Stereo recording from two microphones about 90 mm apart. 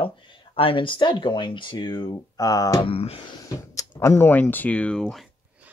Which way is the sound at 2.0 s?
45° left (ahead or behind).